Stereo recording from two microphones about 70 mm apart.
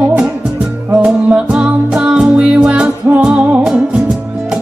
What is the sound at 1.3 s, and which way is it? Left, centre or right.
Music, centre.